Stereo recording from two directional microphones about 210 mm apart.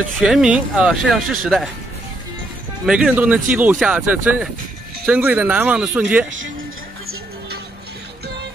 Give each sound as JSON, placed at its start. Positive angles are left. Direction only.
{"t": 0.2, "sound": "speech", "side_deg": -5}
{"t": 2.9, "sound": "speech", "side_deg": -5}